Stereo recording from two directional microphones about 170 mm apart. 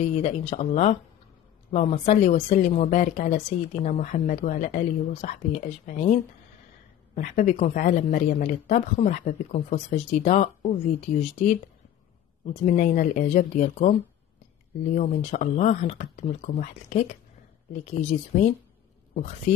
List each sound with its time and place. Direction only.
0.1 s speech: 40° left (ahead or behind)
15.0 s speech: 40° left (ahead or behind)